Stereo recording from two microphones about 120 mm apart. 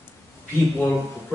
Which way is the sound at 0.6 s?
15° left (ahead or behind).